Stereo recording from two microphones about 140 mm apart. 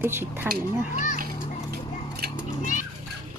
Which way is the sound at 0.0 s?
15° right (ahead or behind).